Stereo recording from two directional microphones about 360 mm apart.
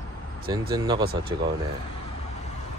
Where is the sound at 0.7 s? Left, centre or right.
Centre.